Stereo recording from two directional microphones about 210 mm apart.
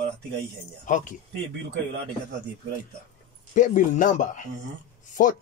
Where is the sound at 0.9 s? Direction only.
40° left (ahead or behind).